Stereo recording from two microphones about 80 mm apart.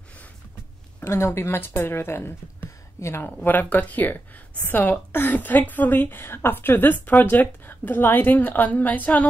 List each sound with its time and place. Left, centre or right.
1.0 s a woman's voice: left
3.3 s speech: left